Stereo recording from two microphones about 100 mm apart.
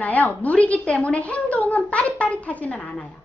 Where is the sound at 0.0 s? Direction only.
15° left (ahead or behind).